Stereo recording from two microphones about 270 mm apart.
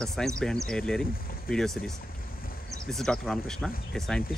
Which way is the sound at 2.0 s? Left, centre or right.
Left.